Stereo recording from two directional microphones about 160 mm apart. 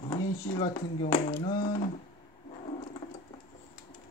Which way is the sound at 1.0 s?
60° left (ahead or behind).